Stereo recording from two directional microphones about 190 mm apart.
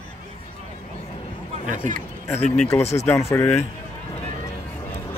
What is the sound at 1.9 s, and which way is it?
Speech, 10° left (ahead or behind).